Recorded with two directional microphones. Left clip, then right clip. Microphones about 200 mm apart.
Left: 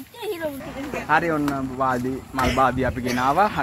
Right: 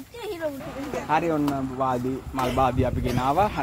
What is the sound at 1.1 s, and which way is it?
Speech, centre (ahead or behind).